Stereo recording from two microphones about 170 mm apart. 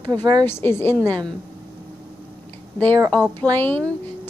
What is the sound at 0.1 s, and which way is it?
Speech, 25° right (ahead or behind).